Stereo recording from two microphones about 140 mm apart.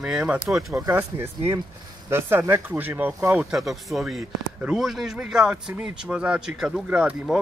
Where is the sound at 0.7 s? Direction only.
20° right (ahead or behind).